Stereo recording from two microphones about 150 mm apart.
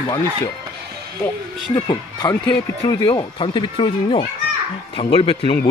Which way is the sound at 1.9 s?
30° left (ahead or behind).